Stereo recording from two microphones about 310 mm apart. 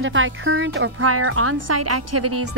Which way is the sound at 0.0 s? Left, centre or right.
Right.